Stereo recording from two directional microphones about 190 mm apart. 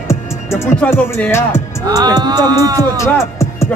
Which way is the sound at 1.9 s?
20° right (ahead or behind).